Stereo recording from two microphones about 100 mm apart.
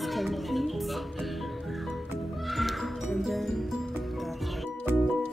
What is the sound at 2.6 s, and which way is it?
Music, centre (ahead or behind).